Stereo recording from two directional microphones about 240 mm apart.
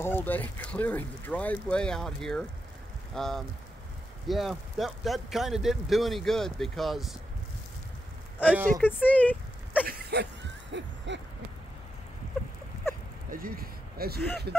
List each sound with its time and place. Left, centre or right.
0.0 s speech: centre
8.4 s speech: centre
8.8 s speech: centre
9.8 s a sound: right
10.7 s owl: right
13.3 s speech: right